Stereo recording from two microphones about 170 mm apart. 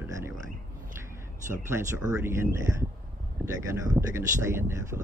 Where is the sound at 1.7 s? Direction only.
15° right (ahead or behind).